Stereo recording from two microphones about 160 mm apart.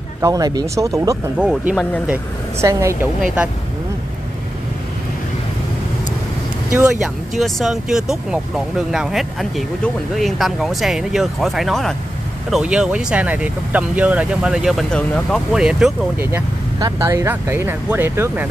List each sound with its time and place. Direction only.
0.2 s speech: 20° right (ahead or behind)
1.4 s speech: 5° right (ahead or behind)
6.8 s speech: 5° right (ahead or behind)
16.2 s speech: 15° right (ahead or behind)